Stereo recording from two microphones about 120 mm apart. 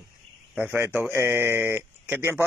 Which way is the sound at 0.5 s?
15° right (ahead or behind).